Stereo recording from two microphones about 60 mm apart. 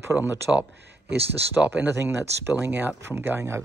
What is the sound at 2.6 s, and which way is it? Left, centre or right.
Speech, right.